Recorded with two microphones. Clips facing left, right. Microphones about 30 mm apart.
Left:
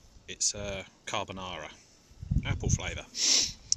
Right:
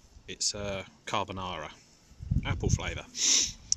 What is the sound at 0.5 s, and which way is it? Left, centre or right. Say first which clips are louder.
Speech: right 2 dB; centre.